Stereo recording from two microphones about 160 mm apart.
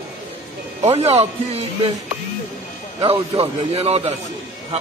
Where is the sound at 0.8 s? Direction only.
40° right (ahead or behind).